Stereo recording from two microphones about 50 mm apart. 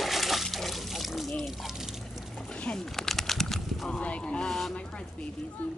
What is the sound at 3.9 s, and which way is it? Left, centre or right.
Speech, left.